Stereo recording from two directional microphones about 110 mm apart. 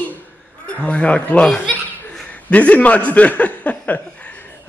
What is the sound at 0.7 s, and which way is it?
Speech, 10° left (ahead or behind).